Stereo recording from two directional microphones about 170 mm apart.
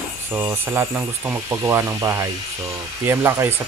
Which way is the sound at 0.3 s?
15° right (ahead or behind).